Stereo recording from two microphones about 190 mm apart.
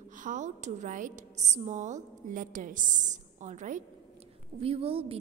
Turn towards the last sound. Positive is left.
turn(degrees=-30)  # may be behind; listen again after turning